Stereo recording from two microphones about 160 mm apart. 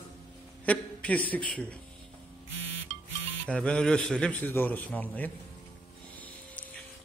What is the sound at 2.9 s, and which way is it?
Music, 45° right (ahead or behind).